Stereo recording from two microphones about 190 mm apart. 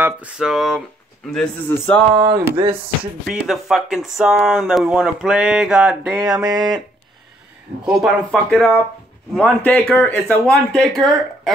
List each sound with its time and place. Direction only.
0.0 s speech: 5° right (ahead or behind)
2.5 s speech: 30° right (ahead or behind)
3.4 s speech: centre (ahead or behind)
6.4 s speech: 20° right (ahead or behind)
7.8 s speech: centre (ahead or behind)